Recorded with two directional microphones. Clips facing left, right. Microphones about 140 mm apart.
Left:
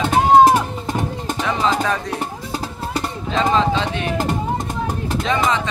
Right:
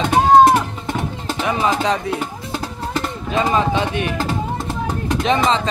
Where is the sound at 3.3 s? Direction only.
15° right (ahead or behind).